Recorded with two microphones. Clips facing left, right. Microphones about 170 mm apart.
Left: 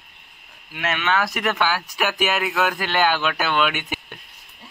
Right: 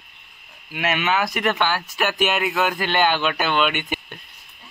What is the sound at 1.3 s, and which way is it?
Speech, 5° left (ahead or behind).